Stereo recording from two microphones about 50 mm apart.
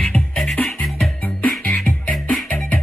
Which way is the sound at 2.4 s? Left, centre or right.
Left.